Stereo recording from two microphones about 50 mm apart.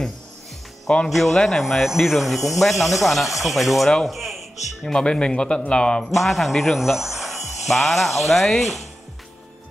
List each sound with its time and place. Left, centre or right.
1.0 s a man's voice: centre
4.9 s speech: centre
6.0 s speech: centre